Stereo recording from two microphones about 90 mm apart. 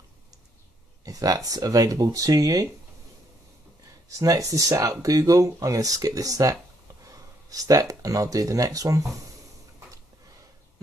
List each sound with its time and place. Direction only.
1.0 s speech: 45° right (ahead or behind)
4.2 s speech: 40° right (ahead or behind)